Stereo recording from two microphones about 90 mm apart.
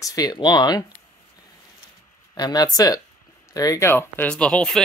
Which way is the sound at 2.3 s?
50° left (ahead or behind).